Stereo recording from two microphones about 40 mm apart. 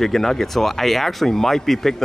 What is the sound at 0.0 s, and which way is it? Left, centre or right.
Speech, centre.